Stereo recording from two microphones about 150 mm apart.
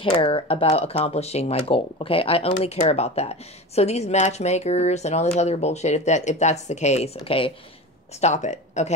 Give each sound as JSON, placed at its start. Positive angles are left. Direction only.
{"t": 0.0, "sound": "speech", "side_deg": 35}
{"t": 7.2, "sound": "speech", "side_deg": 35}
{"t": 8.2, "sound": "speech", "side_deg": 50}